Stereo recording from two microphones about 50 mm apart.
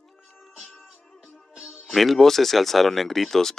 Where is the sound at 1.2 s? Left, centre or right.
Centre.